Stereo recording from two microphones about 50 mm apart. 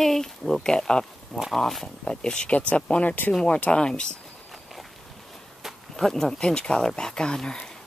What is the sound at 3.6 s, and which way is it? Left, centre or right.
Speech, centre.